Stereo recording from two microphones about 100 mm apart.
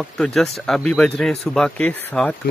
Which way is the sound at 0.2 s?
5° left (ahead or behind).